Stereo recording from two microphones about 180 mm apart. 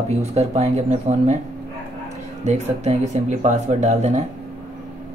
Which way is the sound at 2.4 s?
40° right (ahead or behind).